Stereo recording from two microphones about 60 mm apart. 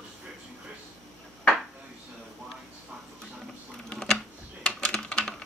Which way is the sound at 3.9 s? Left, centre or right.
Centre.